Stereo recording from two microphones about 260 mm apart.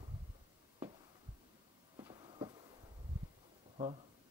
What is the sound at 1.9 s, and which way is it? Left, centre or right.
Train, centre.